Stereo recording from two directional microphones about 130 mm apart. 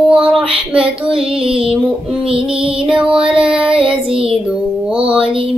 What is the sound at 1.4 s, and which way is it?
Music, 45° right (ahead or behind).